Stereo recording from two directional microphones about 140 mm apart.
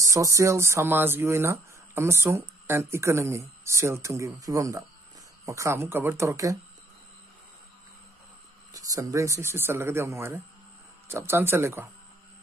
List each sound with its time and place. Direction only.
0.0 s speech: 20° right (ahead or behind)
8.7 s speech: 25° right (ahead or behind)